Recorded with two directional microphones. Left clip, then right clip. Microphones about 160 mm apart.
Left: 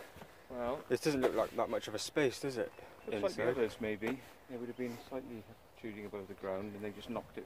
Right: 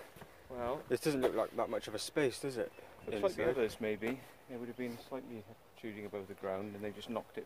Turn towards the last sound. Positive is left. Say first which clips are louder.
# right 1 dB
turn(degrees=-60)  # may be behind; listen again after turning